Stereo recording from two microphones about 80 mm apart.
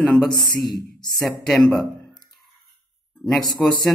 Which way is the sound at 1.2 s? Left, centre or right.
Centre.